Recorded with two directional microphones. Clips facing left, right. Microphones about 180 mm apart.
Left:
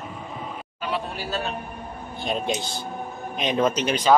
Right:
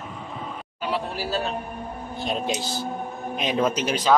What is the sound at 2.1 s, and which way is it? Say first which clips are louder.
A man's voice: left 1 dB; centre (ahead or behind).